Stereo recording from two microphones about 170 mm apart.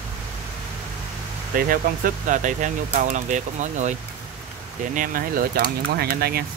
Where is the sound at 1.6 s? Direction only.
55° right (ahead or behind).